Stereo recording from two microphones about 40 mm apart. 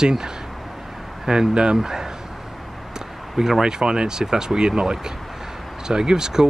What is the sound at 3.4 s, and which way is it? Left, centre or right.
Speech, centre.